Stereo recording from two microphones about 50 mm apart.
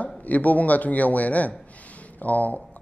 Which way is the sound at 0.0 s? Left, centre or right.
Left.